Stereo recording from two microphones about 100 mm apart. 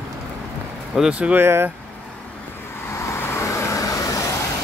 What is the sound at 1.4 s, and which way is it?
Speech, 25° right (ahead or behind).